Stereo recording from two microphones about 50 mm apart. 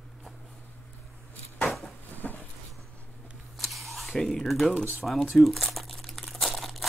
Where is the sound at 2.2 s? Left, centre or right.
Left.